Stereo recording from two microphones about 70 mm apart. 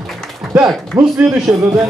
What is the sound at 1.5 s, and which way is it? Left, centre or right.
Speech, right.